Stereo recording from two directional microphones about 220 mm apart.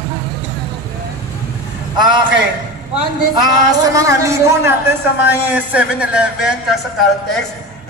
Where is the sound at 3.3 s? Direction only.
15° right (ahead or behind).